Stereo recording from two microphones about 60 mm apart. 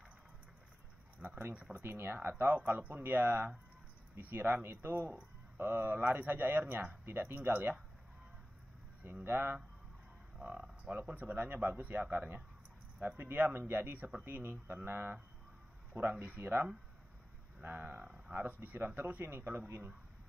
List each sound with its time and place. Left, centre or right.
1.2 s a sound: right
1.7 s speech: right
9.0 s speech: right
10.4 s speech: right
17.6 s speech: right